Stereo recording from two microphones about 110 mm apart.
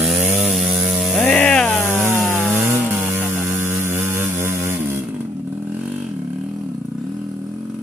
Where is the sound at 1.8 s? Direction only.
20° left (ahead or behind).